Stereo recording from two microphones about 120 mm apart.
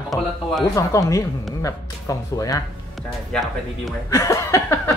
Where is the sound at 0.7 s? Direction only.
25° left (ahead or behind).